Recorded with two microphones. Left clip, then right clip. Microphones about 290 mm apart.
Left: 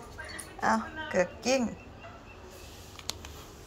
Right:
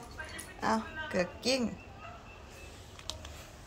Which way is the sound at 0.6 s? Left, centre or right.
Centre.